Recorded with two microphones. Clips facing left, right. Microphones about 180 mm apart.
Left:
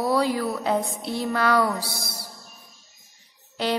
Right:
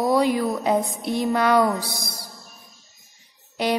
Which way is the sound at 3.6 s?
15° right (ahead or behind).